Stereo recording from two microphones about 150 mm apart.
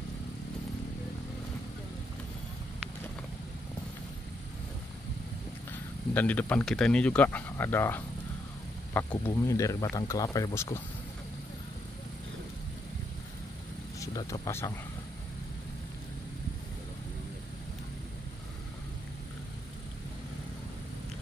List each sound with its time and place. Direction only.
5.7 s speech: 10° left (ahead or behind)
9.3 s speech: 20° left (ahead or behind)
13.9 s speech: 25° left (ahead or behind)